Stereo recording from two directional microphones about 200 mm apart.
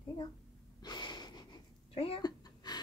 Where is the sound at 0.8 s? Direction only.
20° left (ahead or behind).